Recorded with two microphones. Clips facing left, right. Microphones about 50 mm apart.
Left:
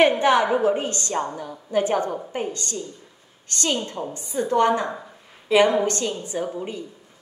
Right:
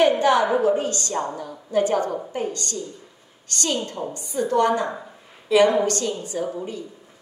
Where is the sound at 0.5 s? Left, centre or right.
Centre.